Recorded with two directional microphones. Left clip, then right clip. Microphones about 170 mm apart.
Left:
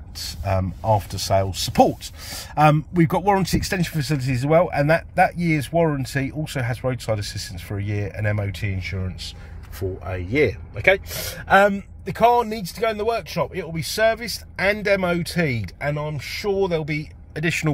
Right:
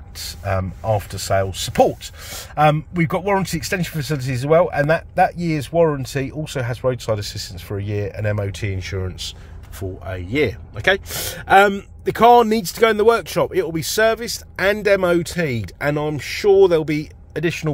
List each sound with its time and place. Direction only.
0.2 s speech: centre (ahead or behind)
8.5 s speech: 20° right (ahead or behind)
9.8 s speech: 5° left (ahead or behind)
11.1 s speech: 50° right (ahead or behind); by 15.6 s 20° right (ahead or behind)
16.0 s speech: 55° right (ahead or behind)
16.6 s speech: 30° right (ahead or behind)
17.5 s speech: centre (ahead or behind)